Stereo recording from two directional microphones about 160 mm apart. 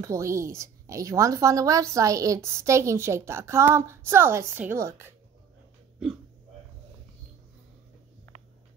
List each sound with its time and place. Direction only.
0.0 s a woman's voice: 20° right (ahead or behind)